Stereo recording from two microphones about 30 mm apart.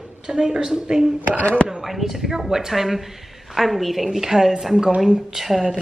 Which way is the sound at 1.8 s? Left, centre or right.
Centre.